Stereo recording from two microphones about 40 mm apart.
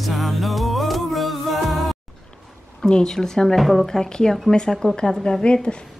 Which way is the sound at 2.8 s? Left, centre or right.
Centre.